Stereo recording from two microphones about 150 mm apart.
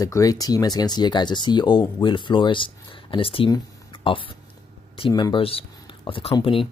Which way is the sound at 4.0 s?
35° left (ahead or behind).